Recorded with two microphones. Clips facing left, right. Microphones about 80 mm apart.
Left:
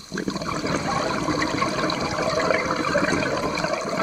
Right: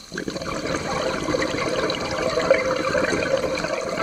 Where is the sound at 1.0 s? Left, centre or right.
Centre.